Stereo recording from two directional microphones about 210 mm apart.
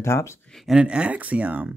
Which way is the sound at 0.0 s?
10° left (ahead or behind).